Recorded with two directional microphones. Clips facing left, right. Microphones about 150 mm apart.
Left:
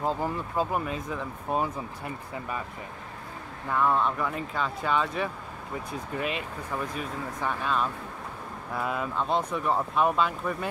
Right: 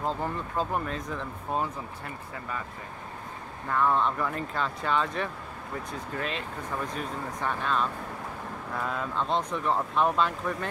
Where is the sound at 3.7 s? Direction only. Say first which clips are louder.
Even; 5° left (ahead or behind).